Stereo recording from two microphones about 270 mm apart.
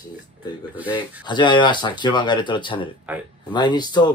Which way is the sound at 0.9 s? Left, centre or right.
Centre.